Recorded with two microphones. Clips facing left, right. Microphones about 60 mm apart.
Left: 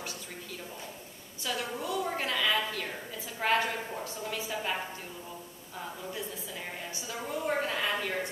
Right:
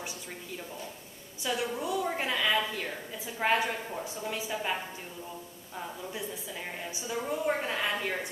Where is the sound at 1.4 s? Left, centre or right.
Centre.